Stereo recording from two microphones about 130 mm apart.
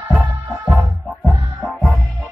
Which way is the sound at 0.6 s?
Centre (ahead or behind).